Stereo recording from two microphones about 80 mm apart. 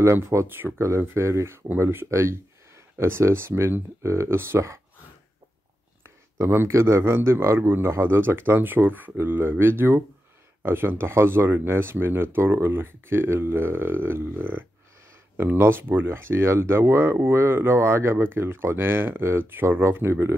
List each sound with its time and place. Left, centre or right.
0.0 s speech: right
6.5 s speech: right